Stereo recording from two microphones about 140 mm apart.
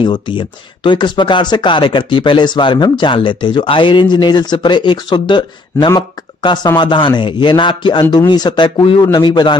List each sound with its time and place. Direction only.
0.0 s speech: 35° left (ahead or behind)